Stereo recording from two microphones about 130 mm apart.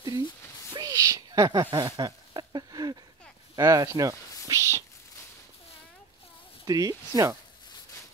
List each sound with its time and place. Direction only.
0.7 s owl: 25° right (ahead or behind)
3.5 s speech: 25° right (ahead or behind)
6.6 s speech: 25° right (ahead or behind)